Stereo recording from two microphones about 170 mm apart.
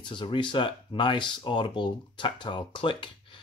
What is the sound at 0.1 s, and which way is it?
Speech, 30° left (ahead or behind).